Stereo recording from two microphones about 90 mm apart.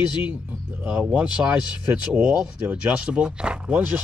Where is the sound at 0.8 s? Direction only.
15° right (ahead or behind).